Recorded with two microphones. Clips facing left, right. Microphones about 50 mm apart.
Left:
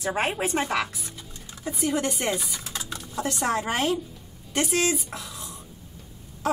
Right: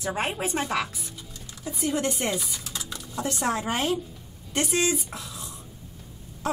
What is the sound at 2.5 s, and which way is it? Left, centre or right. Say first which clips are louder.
Typing: left 2 dB; left.